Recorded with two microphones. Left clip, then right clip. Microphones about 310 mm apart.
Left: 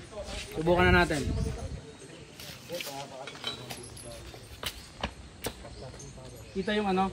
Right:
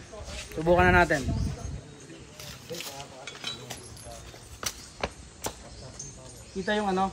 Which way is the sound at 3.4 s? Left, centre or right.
Left.